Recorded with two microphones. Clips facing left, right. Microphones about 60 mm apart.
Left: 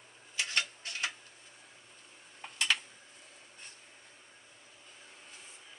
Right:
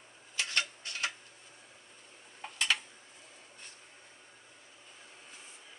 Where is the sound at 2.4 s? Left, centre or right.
Centre.